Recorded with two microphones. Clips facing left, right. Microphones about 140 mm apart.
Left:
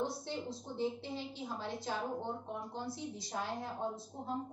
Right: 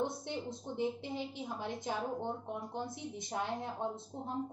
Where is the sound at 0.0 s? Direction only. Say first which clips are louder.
Right 1 dB; 20° right (ahead or behind).